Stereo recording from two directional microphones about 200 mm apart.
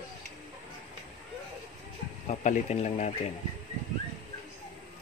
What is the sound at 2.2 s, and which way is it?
Speech, 35° left (ahead or behind).